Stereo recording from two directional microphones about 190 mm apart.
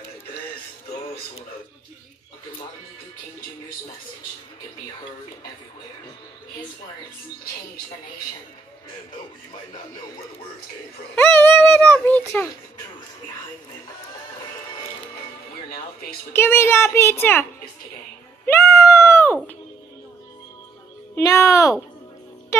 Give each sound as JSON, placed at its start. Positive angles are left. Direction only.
{"t": 11.1, "sound": "speech", "side_deg": 10}
{"t": 16.3, "sound": "speech", "side_deg": 10}
{"t": 18.4, "sound": "cat", "side_deg": 15}
{"t": 21.1, "sound": "music", "side_deg": 15}